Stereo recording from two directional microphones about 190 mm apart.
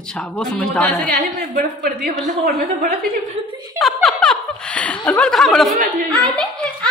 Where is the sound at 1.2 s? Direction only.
50° right (ahead or behind).